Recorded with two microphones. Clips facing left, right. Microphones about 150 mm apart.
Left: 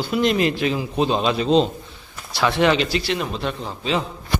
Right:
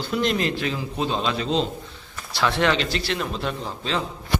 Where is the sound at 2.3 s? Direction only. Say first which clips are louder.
Left 3 dB; 5° left (ahead or behind).